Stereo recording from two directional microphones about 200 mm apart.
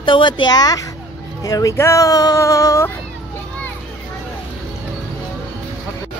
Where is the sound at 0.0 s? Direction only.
25° left (ahead or behind).